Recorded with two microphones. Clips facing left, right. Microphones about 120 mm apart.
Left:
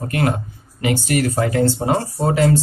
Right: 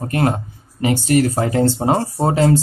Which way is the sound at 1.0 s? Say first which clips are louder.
Right 4 dB; 30° right (ahead or behind).